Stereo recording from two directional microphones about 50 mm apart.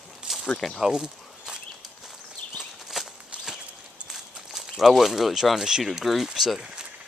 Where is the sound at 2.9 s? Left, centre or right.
Centre.